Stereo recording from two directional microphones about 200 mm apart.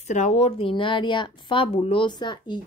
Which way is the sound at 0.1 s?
35° left (ahead or behind).